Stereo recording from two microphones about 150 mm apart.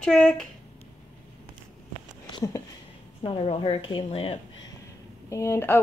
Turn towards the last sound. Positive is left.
turn(degrees=15)  # may be behind; listen again after turning